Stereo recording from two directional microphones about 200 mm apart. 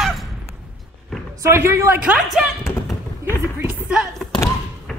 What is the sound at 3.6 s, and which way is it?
Music, 5° right (ahead or behind).